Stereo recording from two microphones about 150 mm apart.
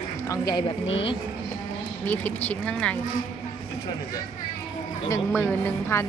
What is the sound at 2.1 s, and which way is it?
Speech, 10° left (ahead or behind).